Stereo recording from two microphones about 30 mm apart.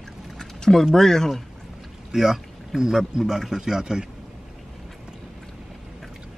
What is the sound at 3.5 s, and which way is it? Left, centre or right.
Speech, right.